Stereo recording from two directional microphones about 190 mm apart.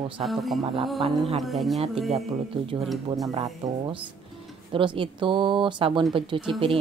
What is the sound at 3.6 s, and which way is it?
Speech, 25° right (ahead or behind).